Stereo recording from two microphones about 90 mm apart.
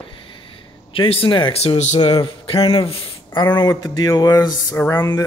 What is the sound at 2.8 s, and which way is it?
Speech, 80° left.